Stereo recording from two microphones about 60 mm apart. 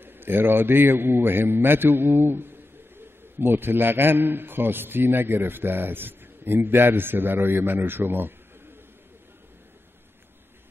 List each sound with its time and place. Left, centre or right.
0.0 s a man's voice: right